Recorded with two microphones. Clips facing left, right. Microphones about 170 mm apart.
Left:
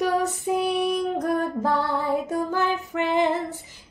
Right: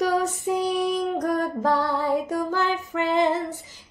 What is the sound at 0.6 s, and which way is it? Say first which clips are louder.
Speech: even; 15° left (ahead or behind).